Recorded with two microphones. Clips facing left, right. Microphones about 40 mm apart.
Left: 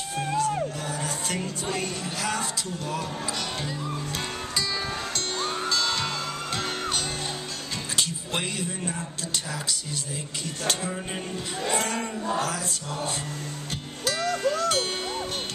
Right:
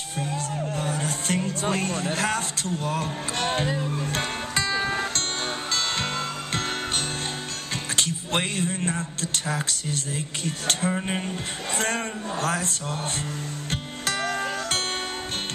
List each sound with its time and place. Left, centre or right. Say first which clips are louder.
0.4 s music: left 3 dB; right
7.9 s a man's voice: right 4 dB; right
11.8 s speech: right 2 dB; right
13.7 s music: right 1 dB; right